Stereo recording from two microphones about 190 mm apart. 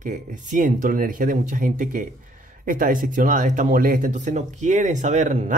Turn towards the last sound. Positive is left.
turn(degrees=-40)  # may be behind; listen again after turning